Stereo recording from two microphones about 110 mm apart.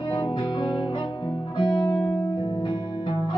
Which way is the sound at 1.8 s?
15° left (ahead or behind).